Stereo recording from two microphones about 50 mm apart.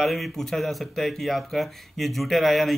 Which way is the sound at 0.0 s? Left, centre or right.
Centre.